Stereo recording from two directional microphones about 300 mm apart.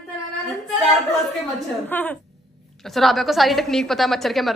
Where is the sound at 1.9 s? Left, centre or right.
Centre.